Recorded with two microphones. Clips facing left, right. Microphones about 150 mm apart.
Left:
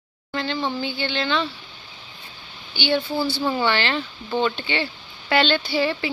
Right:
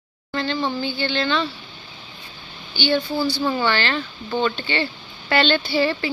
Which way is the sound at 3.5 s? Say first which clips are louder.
Even; 20° left (ahead or behind).